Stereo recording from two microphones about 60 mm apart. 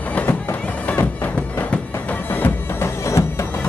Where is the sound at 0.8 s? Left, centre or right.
Left.